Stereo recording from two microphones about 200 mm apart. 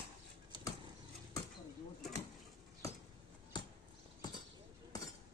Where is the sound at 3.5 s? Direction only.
20° left (ahead or behind).